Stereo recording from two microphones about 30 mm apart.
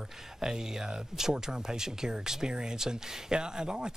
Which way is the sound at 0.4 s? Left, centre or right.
Right.